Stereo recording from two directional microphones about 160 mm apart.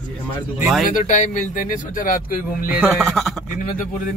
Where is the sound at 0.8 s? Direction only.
55° left (ahead or behind).